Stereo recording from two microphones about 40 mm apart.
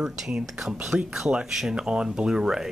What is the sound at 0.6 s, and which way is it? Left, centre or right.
Speech, centre.